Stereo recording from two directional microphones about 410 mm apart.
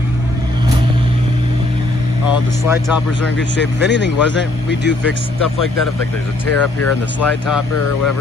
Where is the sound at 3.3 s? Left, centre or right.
Left.